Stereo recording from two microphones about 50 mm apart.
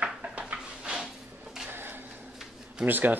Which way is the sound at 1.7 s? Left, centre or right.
Right.